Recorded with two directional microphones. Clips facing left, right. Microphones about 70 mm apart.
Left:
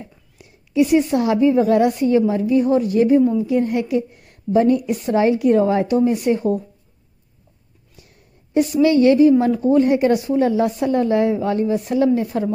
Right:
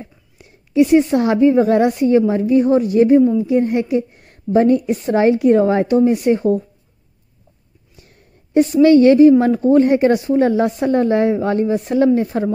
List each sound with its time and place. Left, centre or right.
0.4 s a woman's voice: right
8.5 s a woman's voice: right